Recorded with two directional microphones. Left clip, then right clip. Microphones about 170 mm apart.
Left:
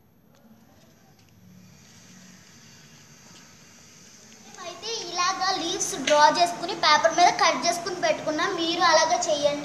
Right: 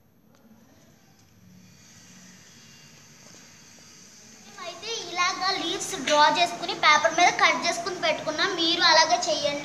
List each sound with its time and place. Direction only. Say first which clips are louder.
4.6 s a child's voice: even; 35° left (ahead or behind)